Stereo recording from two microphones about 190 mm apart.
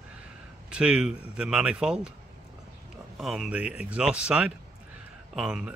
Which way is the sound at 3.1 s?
Centre (ahead or behind).